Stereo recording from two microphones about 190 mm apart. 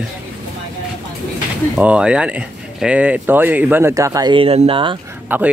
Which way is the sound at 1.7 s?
5° right (ahead or behind).